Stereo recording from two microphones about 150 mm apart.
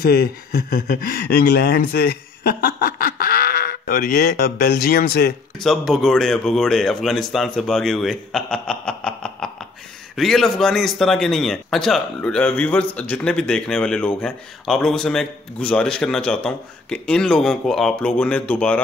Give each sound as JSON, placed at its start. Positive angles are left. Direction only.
{"t": 0.0, "sound": "speech", "side_deg": 90}
{"t": 5.6, "sound": "a man's voice", "side_deg": 0}